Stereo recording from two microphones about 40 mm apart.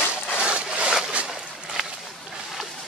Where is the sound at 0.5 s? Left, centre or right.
Right.